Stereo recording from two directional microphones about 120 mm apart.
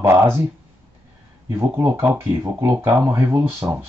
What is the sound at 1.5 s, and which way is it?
Speech, 20° right (ahead or behind).